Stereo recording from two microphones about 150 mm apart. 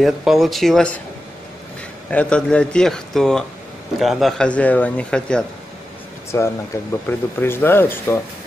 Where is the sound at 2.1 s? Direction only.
10° left (ahead or behind).